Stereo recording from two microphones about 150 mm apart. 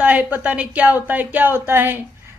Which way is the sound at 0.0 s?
10° right (ahead or behind).